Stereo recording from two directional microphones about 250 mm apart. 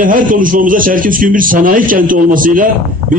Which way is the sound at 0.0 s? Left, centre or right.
Right.